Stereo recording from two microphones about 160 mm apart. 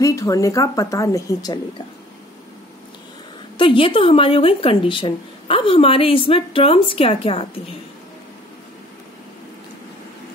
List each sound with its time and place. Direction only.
0.0 s a woman's voice: 20° left (ahead or behind)
3.5 s speech: 30° left (ahead or behind)